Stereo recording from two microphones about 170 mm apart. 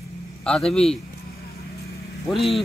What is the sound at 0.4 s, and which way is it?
Speech, 5° left (ahead or behind).